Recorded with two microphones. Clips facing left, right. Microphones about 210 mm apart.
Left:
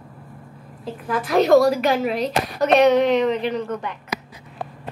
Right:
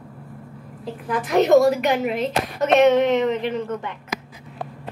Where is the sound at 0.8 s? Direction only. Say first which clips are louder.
Even; 15° right (ahead or behind).